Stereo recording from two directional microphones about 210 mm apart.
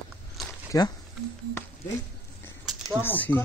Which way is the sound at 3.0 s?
10° left (ahead or behind).